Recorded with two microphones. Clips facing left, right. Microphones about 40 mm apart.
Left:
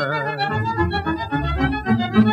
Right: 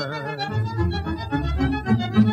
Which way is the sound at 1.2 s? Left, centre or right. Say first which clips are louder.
Left 3 dB; left.